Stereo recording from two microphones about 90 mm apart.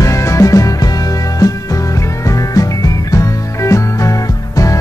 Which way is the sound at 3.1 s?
35° left (ahead or behind).